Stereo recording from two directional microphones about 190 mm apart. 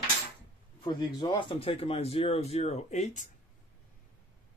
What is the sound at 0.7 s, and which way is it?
Speech, 25° left (ahead or behind).